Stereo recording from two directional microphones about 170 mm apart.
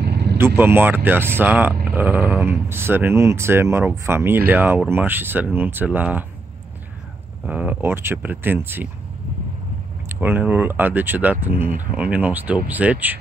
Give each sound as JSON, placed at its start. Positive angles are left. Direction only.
{"t": 0.0, "sound": "vehicle", "side_deg": -70}
{"t": 0.6, "sound": "speech", "side_deg": -10}
{"t": 7.4, "sound": "speech", "side_deg": -10}
{"t": 10.0, "sound": "speech", "side_deg": -10}